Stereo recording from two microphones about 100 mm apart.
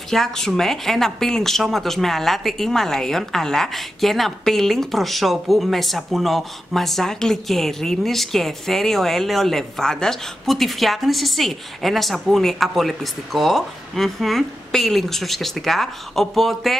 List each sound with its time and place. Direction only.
0.1 s speech: 5° left (ahead or behind)